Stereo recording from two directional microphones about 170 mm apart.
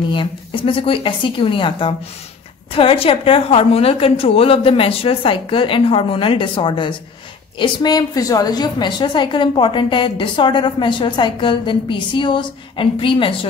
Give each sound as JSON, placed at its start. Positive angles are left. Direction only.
{"t": 0.1, "sound": "a woman's voice", "side_deg": 30}